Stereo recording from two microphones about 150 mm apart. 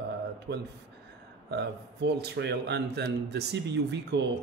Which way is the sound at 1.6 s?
90° right.